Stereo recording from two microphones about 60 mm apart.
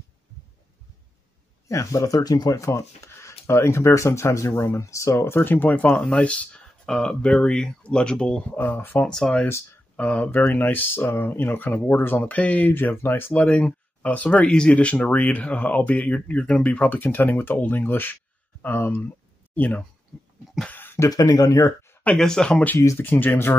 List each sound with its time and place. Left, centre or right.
1.7 s speech: left
6.0 s speech: left
8.5 s speech: left
9.0 s speech: centre
9.9 s speech: left
12.3 s speech: left
12.7 s speech: left
13.3 s speech: left
16.6 s speech: left
20.7 s a sound: left
21.1 s speech: left
22.1 s speech: centre
22.9 s speech: left